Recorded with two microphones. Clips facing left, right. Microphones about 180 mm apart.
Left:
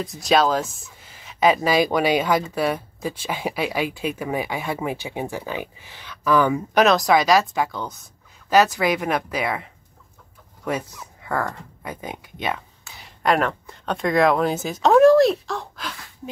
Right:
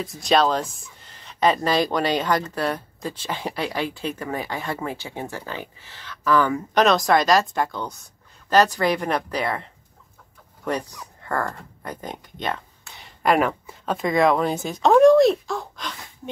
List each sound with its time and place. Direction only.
0.2 s speech: centre (ahead or behind)
6.8 s a woman's voice: centre (ahead or behind)